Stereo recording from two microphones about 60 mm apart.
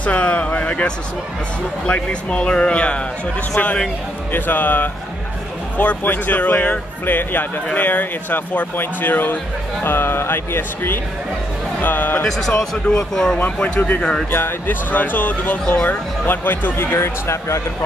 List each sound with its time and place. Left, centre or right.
0.0 s speech: left
12.3 s speech: centre
13.4 s speech: left
14.3 s speech: left